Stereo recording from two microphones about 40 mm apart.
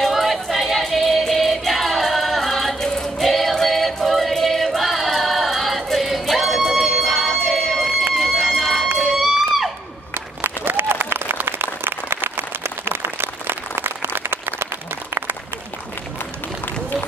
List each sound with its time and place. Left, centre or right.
0.1 s music: centre
8.4 s run: centre
8.9 s music: centre
10.4 s applause: right